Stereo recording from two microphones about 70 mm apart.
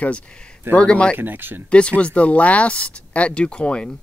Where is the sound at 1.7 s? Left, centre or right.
Centre.